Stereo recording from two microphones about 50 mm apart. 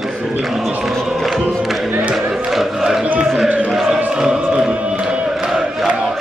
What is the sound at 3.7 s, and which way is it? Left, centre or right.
Choir, centre.